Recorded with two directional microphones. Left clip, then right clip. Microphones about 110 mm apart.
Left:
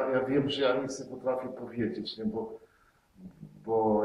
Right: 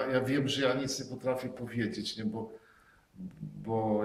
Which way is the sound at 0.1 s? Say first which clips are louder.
Left 2 dB; 30° right (ahead or behind).